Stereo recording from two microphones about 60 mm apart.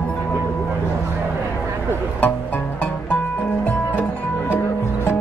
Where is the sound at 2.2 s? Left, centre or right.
Left.